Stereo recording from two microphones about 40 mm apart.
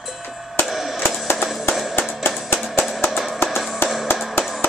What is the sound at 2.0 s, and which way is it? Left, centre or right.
Music, left.